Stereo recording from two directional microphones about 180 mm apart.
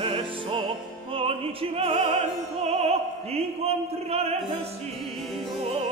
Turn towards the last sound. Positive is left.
turn(degrees=-35)  # may be behind; listen again after turning